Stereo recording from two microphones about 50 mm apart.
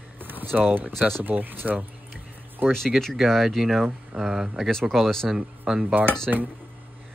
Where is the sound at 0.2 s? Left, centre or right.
Right.